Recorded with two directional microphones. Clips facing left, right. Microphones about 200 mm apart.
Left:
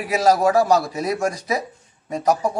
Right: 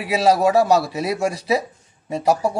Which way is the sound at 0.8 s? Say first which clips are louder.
Right 1 dB; 10° right (ahead or behind).